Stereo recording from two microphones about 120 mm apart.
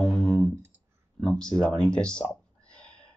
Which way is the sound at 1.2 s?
10° left (ahead or behind).